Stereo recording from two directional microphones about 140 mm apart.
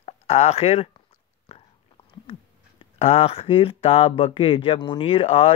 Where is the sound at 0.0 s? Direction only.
50° left (ahead or behind).